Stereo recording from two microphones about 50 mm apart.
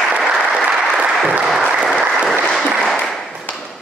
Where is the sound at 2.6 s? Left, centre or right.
Centre.